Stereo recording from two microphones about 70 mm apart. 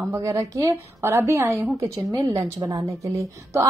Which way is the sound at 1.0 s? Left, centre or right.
Right.